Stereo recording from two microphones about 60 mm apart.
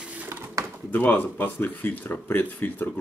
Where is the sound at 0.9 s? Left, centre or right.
Left.